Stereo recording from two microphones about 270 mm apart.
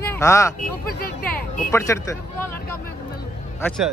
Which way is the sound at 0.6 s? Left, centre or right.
Left.